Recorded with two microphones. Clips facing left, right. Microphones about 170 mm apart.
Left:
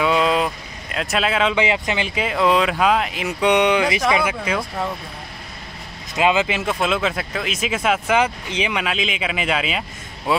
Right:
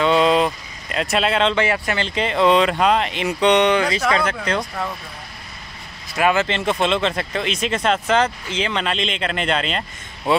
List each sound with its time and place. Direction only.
0.0 s vehicle: 5° left (ahead or behind)
0.9 s speech: centre (ahead or behind)
1.6 s speech: 15° left (ahead or behind)
6.1 s speech: 15° left (ahead or behind)